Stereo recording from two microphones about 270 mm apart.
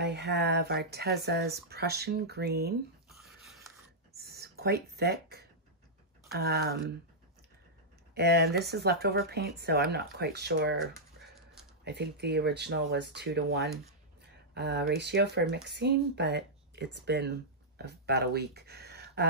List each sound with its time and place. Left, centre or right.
0.0 s speech: right
4.1 s a sound: right
6.3 s speech: right
8.1 s speech: right
10.9 s dog: centre
11.8 s speech: right